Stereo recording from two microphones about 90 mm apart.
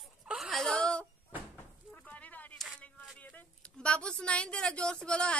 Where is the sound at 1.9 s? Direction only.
15° left (ahead or behind).